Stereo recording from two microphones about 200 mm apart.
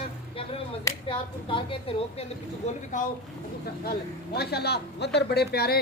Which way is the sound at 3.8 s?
50° left (ahead or behind).